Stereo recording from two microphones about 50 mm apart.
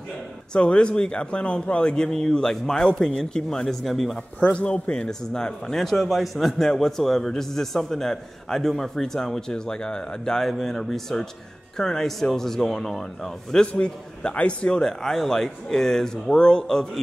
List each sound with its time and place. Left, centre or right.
0.5 s a man's voice: left
3.6 s speech: centre
4.5 s a man's voice: left
10.4 s a man's voice: centre